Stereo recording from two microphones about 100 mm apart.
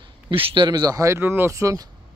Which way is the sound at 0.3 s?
65° right (ahead or behind).